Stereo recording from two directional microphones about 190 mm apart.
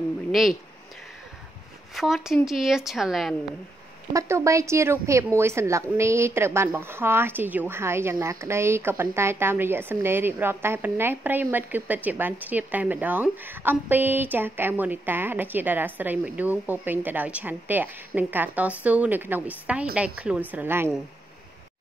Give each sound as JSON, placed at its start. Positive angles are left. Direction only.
{"t": 0.3, "sound": "speech", "side_deg": 0}
{"t": 2.0, "sound": "a woman's voice", "side_deg": 0}
{"t": 4.1, "sound": "a woman's voice", "side_deg": -15}